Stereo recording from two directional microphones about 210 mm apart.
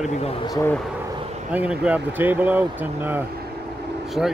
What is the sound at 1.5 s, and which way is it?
Speech, 5° right (ahead or behind).